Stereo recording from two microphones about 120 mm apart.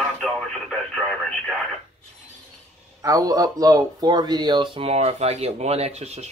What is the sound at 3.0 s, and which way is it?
A man's voice, 30° right (ahead or behind).